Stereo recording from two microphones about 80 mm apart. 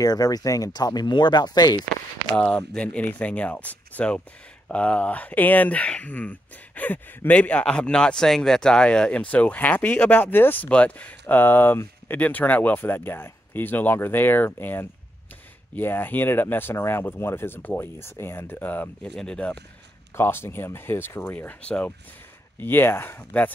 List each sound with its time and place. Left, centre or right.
0.0 s speech: left
2.3 s speech: centre
19.0 s speech: centre
20.2 s speech: left
22.6 s speech: left